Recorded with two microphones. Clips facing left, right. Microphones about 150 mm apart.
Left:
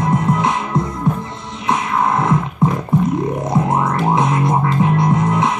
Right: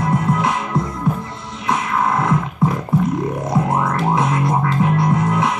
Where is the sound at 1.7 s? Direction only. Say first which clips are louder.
Left 2 dB; 20° left (ahead or behind).